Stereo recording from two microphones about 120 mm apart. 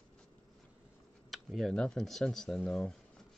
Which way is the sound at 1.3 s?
Centre (ahead or behind).